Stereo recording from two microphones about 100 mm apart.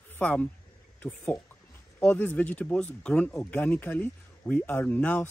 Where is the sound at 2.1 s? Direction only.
15° left (ahead or behind).